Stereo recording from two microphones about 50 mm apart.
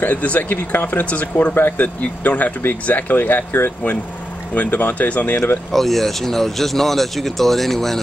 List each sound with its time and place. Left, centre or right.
0.0 s speech: left
1.0 s speech: left
1.5 s speech: left
4.6 s speech: left
5.7 s speech: centre